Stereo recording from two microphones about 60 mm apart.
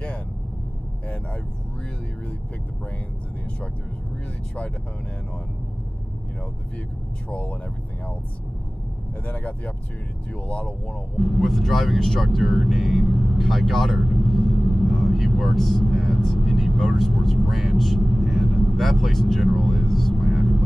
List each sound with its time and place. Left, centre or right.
7.2 s speech: left
9.2 s speech: left
11.1 s speech: centre